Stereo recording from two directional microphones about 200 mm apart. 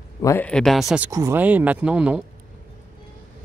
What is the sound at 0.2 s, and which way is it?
Speech, 10° left (ahead or behind).